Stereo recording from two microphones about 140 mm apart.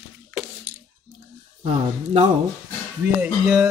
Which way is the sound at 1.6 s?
50° right (ahead or behind).